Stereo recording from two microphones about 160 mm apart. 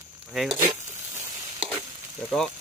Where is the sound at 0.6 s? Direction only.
15° right (ahead or behind).